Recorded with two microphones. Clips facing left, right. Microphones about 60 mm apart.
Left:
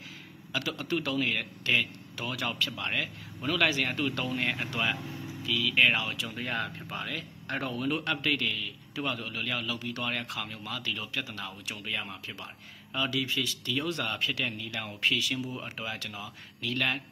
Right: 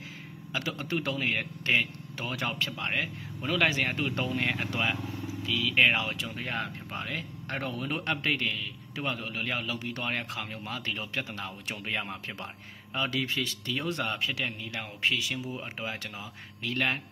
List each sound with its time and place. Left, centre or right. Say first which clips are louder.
0.5 s a man's voice: left 1 dB; right
5.5 s speech: right 1 dB; centre
5.9 s a man's voice: right 1 dB; right
7.6 s speech: left 3 dB; centre
7.9 s a man's voice: right 1 dB; right
15.8 s a man's voice: right 1 dB; right